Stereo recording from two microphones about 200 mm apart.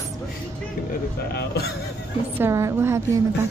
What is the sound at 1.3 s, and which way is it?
Speech, 55° left (ahead or behind).